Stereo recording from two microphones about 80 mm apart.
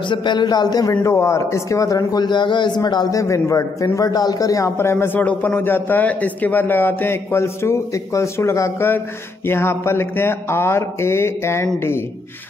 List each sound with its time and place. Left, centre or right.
0.1 s speech: left
1.0 s speech: left
2.1 s speech: left
2.8 s speech: left
3.2 s a man's voice: left
4.7 s a man's voice: left